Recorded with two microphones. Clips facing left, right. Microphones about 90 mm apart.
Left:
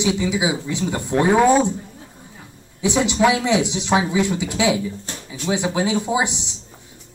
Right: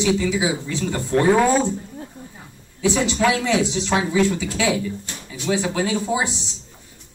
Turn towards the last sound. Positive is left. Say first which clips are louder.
# left 2 dB
turn(degrees=20)  # may be behind; listen again after turning